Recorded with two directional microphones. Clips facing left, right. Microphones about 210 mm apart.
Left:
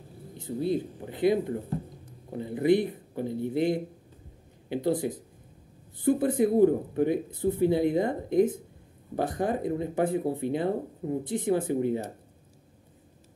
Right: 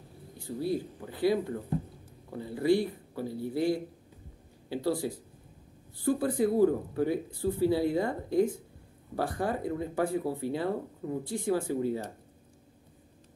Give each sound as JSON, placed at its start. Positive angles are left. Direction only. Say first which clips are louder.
{"t": 0.4, "sound": "speech", "louder": "left 3 dB", "side_deg": 20}